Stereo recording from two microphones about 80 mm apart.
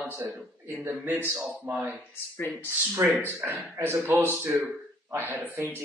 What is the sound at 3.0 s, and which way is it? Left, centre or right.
Speech, right.